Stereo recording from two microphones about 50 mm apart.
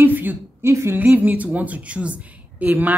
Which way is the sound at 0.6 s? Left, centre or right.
Right.